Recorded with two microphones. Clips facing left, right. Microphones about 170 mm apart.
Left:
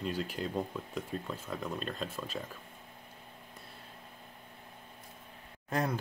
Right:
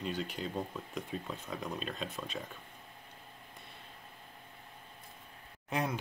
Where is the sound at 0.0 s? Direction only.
5° left (ahead or behind).